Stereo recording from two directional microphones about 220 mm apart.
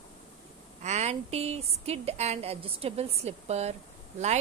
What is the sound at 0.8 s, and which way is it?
A woman's voice, 30° right (ahead or behind).